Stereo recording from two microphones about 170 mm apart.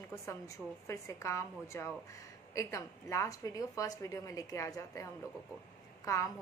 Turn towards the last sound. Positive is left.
turn(degrees=20)  # may be behind; listen again after turning